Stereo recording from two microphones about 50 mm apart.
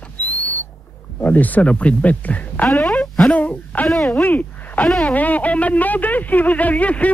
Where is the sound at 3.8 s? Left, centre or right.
Centre.